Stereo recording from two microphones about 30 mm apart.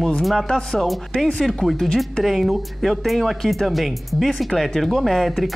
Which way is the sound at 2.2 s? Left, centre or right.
Centre.